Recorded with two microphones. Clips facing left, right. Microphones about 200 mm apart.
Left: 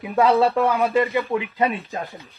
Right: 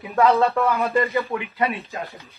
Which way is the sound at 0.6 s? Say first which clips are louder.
Left 2 dB; 15° left (ahead or behind).